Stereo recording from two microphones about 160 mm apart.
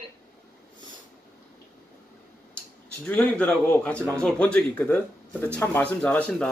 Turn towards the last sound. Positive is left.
turn(degrees=5)  # may be behind; listen again after turning